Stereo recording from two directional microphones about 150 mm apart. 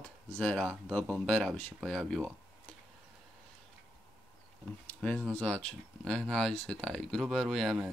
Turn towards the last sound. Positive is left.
turn(degrees=0)  # may be behind; listen again after turning